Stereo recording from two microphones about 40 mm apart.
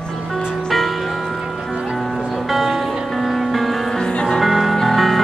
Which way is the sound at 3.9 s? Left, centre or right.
Left.